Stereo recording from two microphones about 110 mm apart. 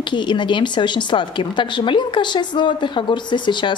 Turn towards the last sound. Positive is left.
turn(degrees=45)  # may be behind; listen again after turning